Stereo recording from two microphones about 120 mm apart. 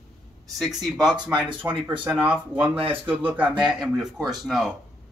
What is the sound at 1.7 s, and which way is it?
Speech, 45° right (ahead or behind).